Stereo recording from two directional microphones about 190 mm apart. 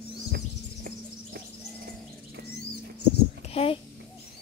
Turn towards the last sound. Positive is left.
turn(degrees=30)  # may be behind; listen again after turning